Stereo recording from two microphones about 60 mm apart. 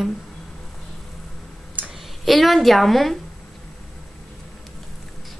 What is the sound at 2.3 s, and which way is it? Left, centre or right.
Speech, centre.